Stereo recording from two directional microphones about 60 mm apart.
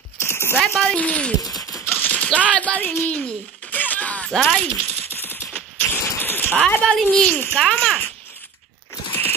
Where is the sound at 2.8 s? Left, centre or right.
Left.